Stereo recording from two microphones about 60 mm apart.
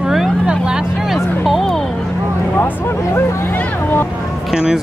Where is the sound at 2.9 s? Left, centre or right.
Left.